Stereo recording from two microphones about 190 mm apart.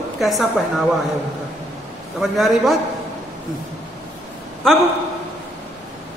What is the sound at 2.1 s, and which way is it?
Speech, centre (ahead or behind).